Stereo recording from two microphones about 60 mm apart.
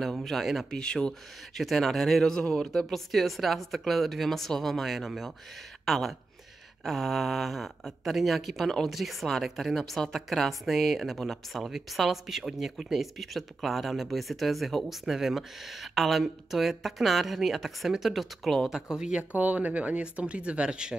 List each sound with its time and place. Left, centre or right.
0.0 s speech: centre
0.7 s speech: centre
18.7 s speech: centre
19.3 s speech: right